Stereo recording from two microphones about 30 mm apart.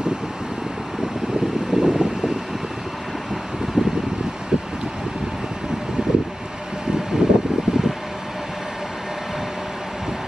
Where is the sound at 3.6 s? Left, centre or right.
Centre.